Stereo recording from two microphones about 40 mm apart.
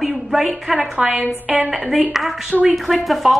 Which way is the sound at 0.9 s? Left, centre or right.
Right.